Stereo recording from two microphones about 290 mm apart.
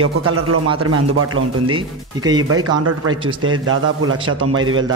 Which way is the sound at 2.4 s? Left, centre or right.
Right.